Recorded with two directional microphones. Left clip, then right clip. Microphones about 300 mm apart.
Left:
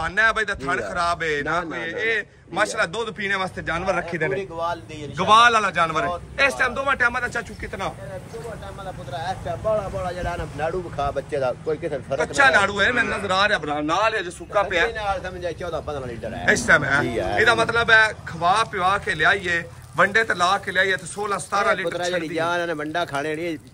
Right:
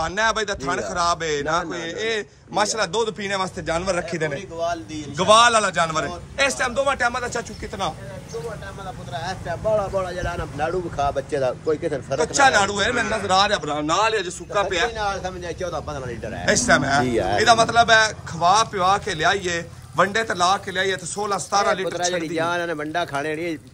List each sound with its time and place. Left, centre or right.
0.0 s a man's voice: centre
4.4 s a man's voice: centre
5.1 s a man's voice: centre
9.1 s speech: right
12.2 s a man's voice: centre
15.0 s a man's voice: right
16.4 s a man's voice: centre
17.0 s speech: right
17.4 s a man's voice: centre